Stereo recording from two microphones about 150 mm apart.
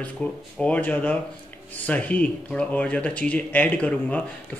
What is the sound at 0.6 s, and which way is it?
A man's voice, 10° left (ahead or behind).